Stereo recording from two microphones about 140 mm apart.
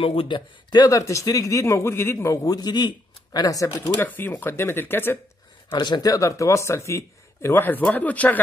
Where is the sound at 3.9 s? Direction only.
15° left (ahead or behind).